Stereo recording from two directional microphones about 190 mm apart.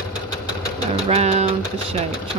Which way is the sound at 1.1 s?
35° right (ahead or behind).